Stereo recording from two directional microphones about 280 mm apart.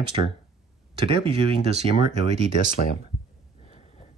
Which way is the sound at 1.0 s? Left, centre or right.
Centre.